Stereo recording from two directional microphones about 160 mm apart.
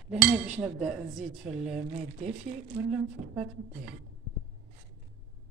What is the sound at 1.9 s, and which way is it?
Speech, 45° right (ahead or behind).